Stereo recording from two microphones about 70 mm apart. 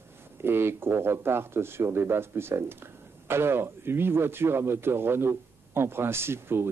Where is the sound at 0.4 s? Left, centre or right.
Right.